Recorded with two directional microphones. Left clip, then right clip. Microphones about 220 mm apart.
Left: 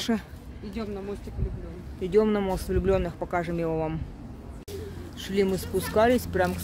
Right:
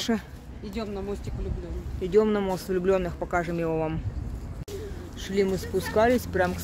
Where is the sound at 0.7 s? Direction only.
40° right (ahead or behind).